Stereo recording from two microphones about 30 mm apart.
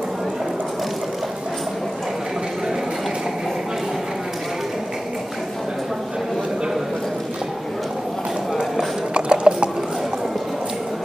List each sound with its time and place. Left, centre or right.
9.1 s ratchet: right